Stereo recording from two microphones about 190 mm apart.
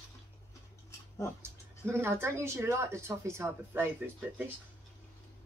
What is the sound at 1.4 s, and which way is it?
Speech, 15° right (ahead or behind).